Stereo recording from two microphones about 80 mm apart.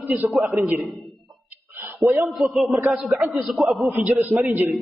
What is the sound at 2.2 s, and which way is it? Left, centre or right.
A man's voice, centre.